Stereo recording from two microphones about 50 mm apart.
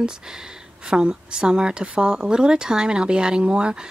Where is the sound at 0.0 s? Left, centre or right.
Centre.